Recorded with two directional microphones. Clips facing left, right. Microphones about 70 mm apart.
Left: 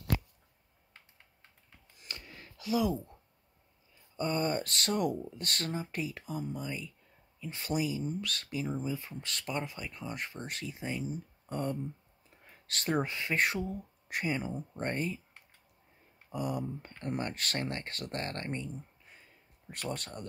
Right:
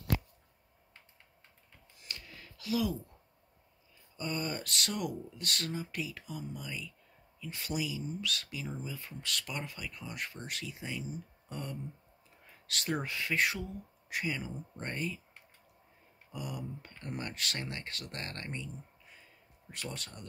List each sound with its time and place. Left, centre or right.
2.1 s a sound: left
2.6 s speech: left
4.2 s speech: left
12.4 s a sound: left
13.1 s speech: left
16.3 s speech: left